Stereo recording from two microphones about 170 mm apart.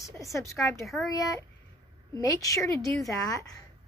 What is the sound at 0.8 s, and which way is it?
Speech, centre (ahead or behind).